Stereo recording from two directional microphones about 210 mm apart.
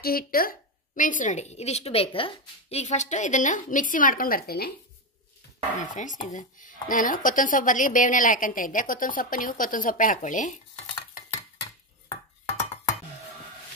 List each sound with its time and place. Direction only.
0.0 s speech: 45° left (ahead or behind)
5.8 s speech: 35° left (ahead or behind)